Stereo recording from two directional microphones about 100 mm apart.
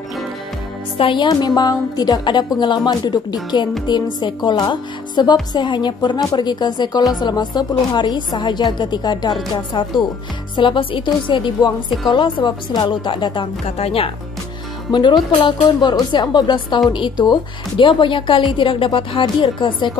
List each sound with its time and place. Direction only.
0.9 s speech: 55° left (ahead or behind)
9.7 s a woman's voice: 55° left (ahead or behind)
13.7 s speech: 85° left
14.9 s speech: 50° left (ahead or behind)